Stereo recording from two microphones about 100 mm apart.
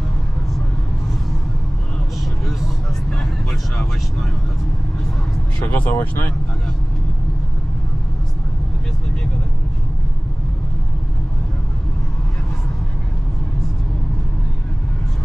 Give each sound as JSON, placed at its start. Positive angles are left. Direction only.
{"t": 3.1, "sound": "vehicle", "side_deg": 5}
{"t": 5.7, "sound": "speech", "side_deg": 25}